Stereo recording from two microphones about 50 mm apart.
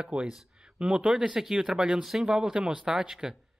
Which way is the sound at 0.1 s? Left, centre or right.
Right.